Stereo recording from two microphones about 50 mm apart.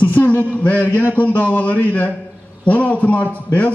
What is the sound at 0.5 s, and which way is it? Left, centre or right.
A man's voice, left.